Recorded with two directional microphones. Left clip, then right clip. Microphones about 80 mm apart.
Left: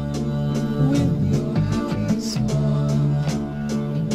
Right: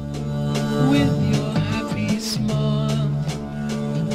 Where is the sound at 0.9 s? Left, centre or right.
Right.